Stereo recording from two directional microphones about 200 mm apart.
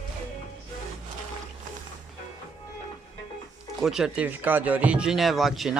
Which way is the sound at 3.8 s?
5° right (ahead or behind).